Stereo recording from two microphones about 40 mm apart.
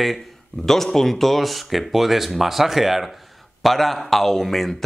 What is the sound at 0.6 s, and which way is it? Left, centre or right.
Speech, centre.